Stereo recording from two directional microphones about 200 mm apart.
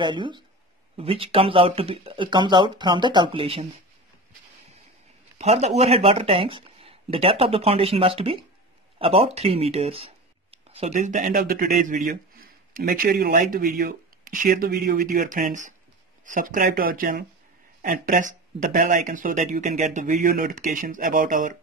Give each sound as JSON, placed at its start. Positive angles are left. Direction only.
{"t": 0.0, "sound": "speech", "side_deg": -25}
{"t": 5.4, "sound": "speech", "side_deg": -35}